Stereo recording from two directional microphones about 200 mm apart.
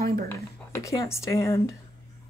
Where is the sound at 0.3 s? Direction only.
15° left (ahead or behind).